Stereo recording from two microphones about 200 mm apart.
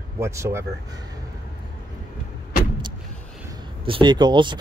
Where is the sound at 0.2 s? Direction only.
15° right (ahead or behind).